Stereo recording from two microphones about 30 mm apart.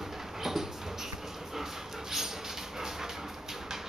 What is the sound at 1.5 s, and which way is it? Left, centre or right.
Dog, centre.